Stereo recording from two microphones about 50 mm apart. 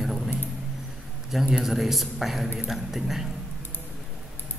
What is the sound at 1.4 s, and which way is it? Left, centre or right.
A man's voice, centre.